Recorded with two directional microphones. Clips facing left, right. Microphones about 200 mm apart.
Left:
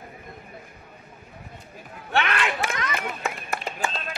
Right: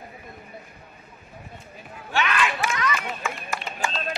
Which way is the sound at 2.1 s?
55° left (ahead or behind).